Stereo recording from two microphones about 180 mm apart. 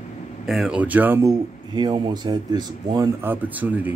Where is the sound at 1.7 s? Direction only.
25° right (ahead or behind).